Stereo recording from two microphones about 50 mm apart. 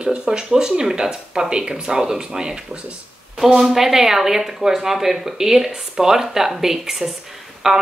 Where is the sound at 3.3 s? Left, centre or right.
Centre.